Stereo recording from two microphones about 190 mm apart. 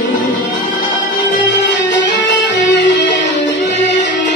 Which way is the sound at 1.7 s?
65° left (ahead or behind).